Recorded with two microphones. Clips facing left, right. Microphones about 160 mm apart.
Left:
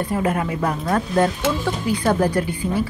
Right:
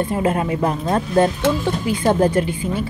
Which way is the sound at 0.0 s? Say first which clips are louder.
Right 2 dB; 25° right (ahead or behind).